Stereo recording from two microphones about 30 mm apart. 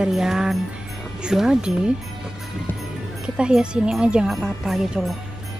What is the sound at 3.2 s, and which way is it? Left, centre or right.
Speech, right.